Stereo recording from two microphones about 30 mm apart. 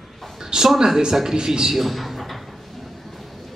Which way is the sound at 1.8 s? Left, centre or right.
Centre.